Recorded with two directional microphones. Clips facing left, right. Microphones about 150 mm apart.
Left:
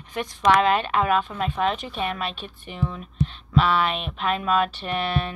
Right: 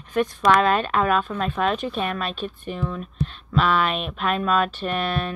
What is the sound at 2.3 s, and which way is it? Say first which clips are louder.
Speech: right 7 dB; 50° right (ahead or behind).